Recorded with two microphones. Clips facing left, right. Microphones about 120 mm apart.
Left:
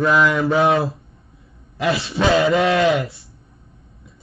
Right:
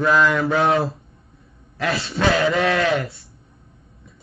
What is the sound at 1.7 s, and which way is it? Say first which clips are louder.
A man's voice: left 3 dB; 25° left (ahead or behind).